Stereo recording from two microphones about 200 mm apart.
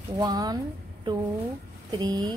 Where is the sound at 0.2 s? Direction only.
20° right (ahead or behind).